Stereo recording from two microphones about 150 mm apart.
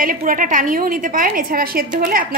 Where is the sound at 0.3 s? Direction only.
60° right (ahead or behind).